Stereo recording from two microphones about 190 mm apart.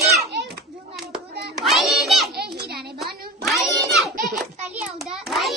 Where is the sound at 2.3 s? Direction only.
55° right (ahead or behind).